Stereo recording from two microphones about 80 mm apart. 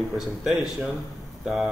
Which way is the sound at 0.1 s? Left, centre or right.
Centre.